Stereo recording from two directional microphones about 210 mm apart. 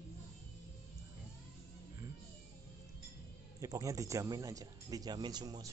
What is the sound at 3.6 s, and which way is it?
Speech, 15° right (ahead or behind).